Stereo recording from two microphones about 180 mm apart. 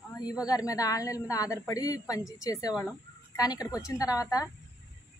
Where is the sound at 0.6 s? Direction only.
20° left (ahead or behind).